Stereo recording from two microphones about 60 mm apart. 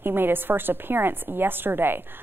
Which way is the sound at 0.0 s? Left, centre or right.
Right.